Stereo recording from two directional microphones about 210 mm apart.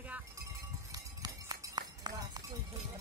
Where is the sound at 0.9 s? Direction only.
20° right (ahead or behind).